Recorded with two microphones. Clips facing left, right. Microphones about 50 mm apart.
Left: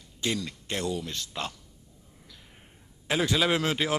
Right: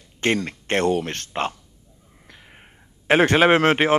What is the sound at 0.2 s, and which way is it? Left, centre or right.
Speech, right.